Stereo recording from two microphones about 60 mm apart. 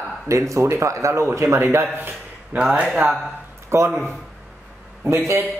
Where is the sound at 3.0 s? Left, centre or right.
Right.